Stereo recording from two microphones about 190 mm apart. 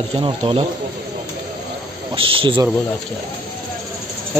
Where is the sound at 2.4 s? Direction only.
25° right (ahead or behind).